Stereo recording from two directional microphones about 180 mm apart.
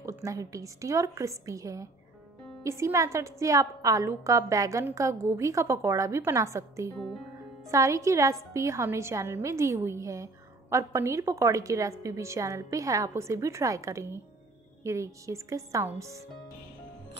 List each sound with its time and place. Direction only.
0.0 s a woman's voice: 15° right (ahead or behind)